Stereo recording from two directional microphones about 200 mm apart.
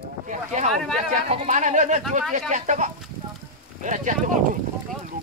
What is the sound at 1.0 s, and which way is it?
Speech, 35° right (ahead or behind).